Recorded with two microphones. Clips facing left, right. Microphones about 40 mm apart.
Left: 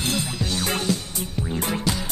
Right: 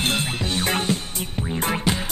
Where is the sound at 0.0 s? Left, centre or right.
Right.